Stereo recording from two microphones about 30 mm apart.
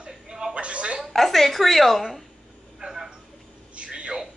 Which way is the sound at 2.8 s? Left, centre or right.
Centre.